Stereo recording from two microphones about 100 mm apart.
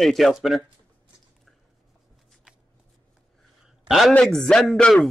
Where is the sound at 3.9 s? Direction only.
Centre (ahead or behind).